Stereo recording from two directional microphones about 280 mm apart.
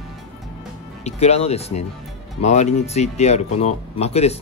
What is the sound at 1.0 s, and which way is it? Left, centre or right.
Speech, left.